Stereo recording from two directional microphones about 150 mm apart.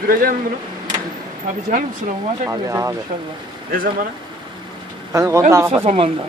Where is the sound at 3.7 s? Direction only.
70° right (ahead or behind).